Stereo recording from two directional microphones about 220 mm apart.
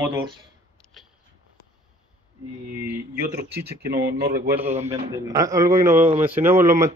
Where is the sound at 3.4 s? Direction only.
45° right (ahead or behind).